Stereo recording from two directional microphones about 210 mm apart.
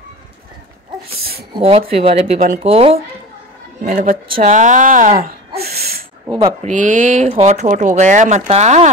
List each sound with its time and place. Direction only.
1.6 s speech: 30° right (ahead or behind)
3.8 s speech: 40° right (ahead or behind)
6.4 s speech: 35° right (ahead or behind)